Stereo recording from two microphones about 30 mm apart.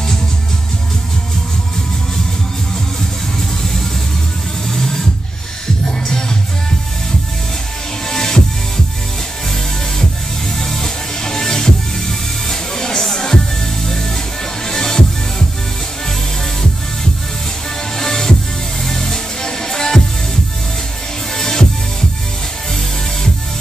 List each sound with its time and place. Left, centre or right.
4.6 s a sound: centre
5.9 s music: left
8.1 s music: centre
10.6 s music: centre
17.9 s music: centre
21.3 s music: centre